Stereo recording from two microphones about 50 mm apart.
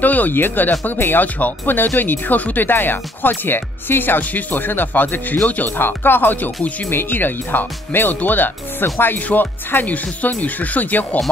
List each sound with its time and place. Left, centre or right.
0.0 s speech: left
6.9 s speech: left